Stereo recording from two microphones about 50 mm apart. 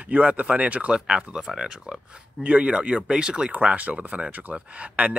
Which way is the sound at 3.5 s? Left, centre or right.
Right.